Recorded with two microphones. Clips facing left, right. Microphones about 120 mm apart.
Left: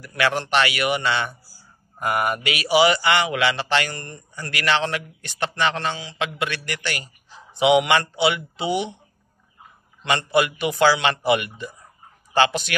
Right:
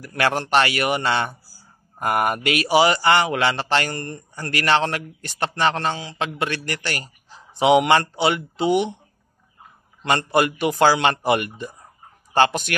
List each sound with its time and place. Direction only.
0.0 s a man's voice: 45° right (ahead or behind)
10.0 s a man's voice: 40° right (ahead or behind)